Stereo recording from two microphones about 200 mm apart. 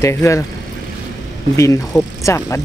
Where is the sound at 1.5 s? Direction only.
15° left (ahead or behind).